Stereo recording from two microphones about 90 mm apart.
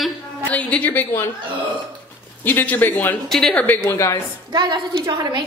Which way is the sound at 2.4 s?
20° left (ahead or behind).